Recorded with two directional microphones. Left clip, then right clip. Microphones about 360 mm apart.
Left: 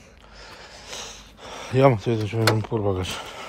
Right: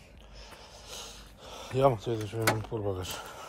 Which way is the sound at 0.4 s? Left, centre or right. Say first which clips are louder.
Left 8 dB; centre.